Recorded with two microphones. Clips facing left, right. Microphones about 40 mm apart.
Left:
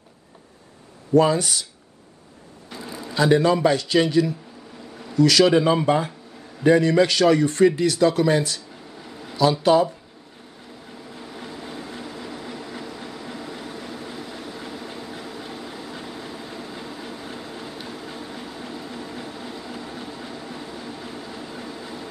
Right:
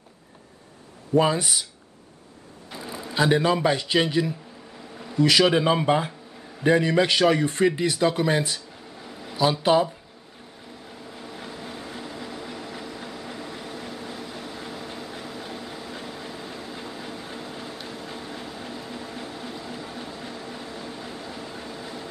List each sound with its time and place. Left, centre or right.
1.1 s speech: centre
2.7 s a man's voice: centre
9.0 s a sound: centre
9.4 s speech: centre
11.1 s vehicle: centre